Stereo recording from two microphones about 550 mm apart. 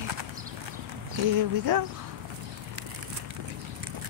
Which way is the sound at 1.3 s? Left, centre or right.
Right.